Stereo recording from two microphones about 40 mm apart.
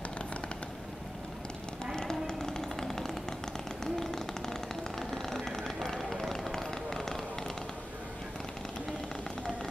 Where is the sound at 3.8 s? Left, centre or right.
Centre.